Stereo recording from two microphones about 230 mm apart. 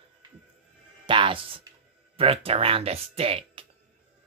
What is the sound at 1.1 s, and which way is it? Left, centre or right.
Speech, right.